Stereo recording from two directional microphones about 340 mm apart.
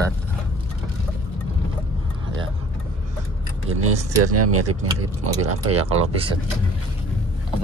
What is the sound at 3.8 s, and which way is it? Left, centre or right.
Speech, right.